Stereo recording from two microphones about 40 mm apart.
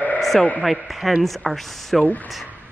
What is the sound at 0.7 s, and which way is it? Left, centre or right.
Speech, centre.